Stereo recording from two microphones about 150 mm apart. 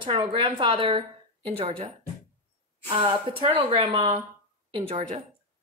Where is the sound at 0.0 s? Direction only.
35° right (ahead or behind).